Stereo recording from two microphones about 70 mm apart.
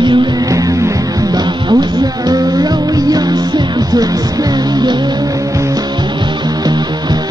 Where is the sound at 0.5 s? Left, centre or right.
Right.